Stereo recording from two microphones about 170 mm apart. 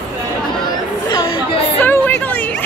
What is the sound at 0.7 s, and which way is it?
Chatter, 25° left (ahead or behind).